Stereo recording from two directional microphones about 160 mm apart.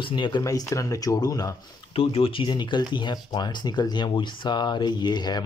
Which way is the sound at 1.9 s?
35° left (ahead or behind).